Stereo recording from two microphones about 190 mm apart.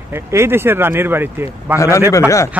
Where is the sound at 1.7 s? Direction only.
15° left (ahead or behind).